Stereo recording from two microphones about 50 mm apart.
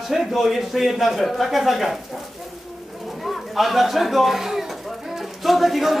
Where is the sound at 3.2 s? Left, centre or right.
Centre.